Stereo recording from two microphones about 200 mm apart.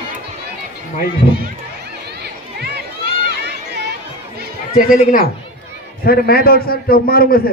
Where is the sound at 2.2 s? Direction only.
55° right (ahead or behind).